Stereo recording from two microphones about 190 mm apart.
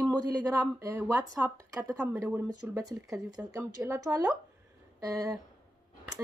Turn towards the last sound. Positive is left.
turn(degrees=-20)  # may be behind; listen again after turning